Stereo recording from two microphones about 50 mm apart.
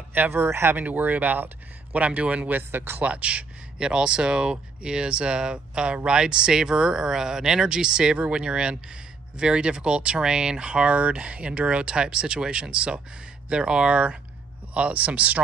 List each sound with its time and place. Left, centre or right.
0.3 s speech: right
0.7 s speech: right
2.0 s speech: right
2.7 s speech: right
3.0 s speech: right